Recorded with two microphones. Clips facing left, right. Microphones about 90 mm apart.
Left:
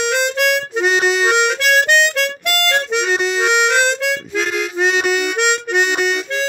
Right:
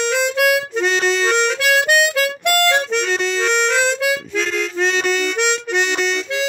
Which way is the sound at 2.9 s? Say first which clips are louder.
Left 2 dB; 10° left (ahead or behind).